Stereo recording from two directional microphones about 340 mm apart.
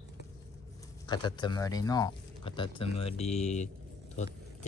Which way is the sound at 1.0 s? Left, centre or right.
Centre.